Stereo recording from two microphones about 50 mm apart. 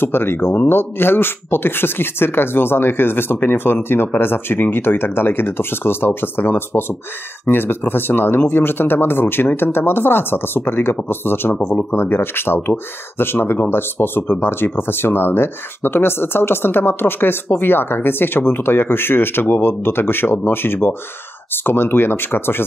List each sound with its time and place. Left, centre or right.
0.0 s speech: left